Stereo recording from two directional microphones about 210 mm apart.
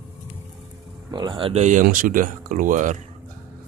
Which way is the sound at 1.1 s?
20° right (ahead or behind).